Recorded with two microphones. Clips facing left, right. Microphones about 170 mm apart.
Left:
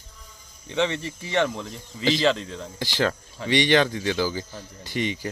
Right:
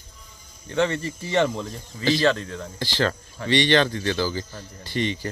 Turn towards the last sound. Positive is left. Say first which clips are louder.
# right 1 dB
turn(degrees=15)  # may be behind; listen again after turning